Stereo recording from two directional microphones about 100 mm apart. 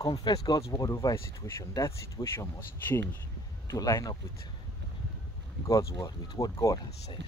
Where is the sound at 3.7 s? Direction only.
35° left (ahead or behind).